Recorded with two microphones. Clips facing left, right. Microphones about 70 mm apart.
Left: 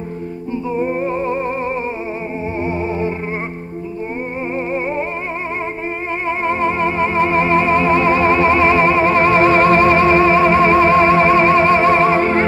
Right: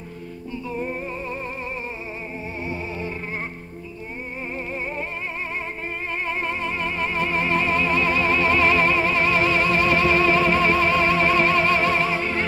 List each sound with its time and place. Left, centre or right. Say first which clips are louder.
1.0 s music: left 11 dB; left
6.2 s music: left 11 dB; left